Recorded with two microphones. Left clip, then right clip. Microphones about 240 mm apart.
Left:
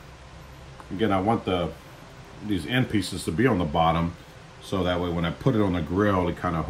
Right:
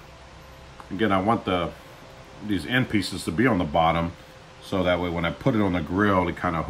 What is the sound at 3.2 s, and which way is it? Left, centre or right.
Speech, centre.